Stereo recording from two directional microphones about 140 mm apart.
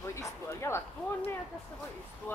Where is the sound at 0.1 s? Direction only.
20° left (ahead or behind).